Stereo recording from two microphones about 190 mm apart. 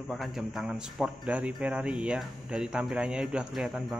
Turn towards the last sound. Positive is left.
turn(degrees=0)  # may be behind; listen again after turning